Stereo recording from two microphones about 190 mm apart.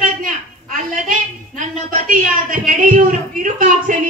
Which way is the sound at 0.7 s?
45° right (ahead or behind).